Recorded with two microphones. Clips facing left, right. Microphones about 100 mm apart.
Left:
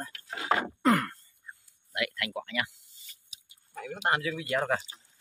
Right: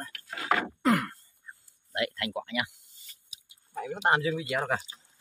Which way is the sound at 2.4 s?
15° right (ahead or behind).